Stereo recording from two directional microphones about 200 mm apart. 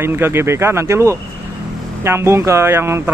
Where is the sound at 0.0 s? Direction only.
10° right (ahead or behind).